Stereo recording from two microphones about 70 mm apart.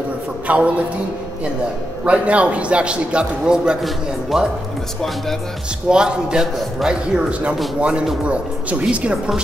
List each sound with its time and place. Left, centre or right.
0.5 s a woman's voice: right
2.0 s a man's voice: centre
5.9 s a man's voice: centre